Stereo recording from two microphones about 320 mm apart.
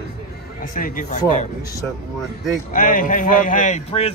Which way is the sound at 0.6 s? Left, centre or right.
Left.